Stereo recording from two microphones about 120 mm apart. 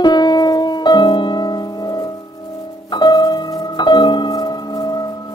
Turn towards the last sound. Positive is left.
turn(degrees=35)  # may be behind; listen again after turning